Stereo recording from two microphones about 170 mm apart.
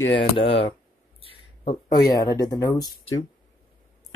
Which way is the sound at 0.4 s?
30° left (ahead or behind).